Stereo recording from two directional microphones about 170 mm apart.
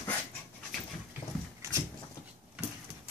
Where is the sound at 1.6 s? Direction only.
15° right (ahead or behind).